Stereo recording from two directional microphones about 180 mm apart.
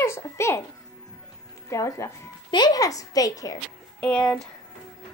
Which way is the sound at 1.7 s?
20° left (ahead or behind).